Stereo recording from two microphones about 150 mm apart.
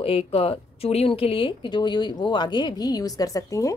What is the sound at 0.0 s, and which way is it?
Speech, 40° left (ahead or behind).